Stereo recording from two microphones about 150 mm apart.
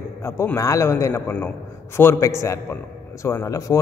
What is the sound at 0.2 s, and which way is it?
Mantra, 15° left (ahead or behind).